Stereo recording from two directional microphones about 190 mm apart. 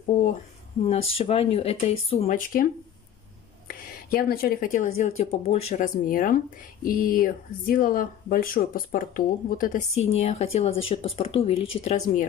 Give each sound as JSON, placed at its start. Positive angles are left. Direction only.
{"t": 0.0, "sound": "speech", "side_deg": 40}
{"t": 0.8, "sound": "speech", "side_deg": 30}
{"t": 10.1, "sound": "speech", "side_deg": 35}